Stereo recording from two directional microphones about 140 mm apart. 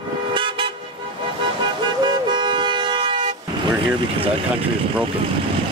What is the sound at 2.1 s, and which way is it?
Vehicle, 30° right (ahead or behind).